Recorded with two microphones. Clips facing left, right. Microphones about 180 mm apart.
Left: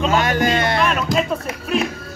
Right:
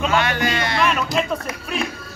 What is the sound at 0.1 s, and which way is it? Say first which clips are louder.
Music: left 3 dB; 45° left (ahead or behind).